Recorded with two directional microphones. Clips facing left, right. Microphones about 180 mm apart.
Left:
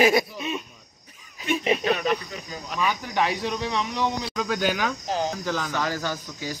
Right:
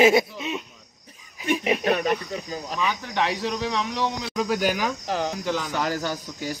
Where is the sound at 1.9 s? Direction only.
50° right (ahead or behind).